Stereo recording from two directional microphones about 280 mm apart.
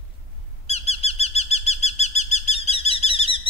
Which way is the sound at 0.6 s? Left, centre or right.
Left.